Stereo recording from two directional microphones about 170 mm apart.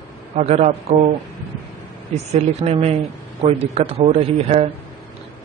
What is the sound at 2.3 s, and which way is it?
Speech, 40° right (ahead or behind).